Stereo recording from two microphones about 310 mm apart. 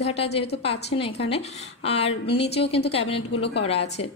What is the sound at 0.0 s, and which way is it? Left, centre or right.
A woman's voice, centre.